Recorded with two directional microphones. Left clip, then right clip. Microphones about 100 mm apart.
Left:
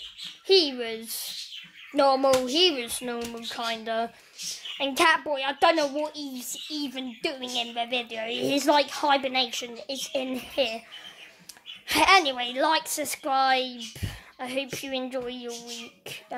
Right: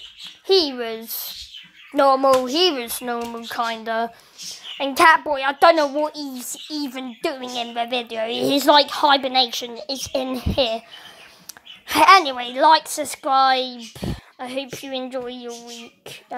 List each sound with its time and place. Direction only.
0.5 s a woman's voice: 20° right (ahead or behind); by 10.8 s 40° right (ahead or behind)
11.9 s a woman's voice: 20° right (ahead or behind)